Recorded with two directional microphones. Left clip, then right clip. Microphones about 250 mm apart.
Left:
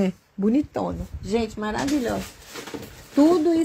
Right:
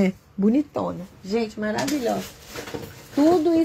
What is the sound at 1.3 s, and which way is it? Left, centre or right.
Speech, left.